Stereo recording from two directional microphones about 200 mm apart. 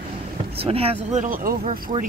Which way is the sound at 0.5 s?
30° right (ahead or behind).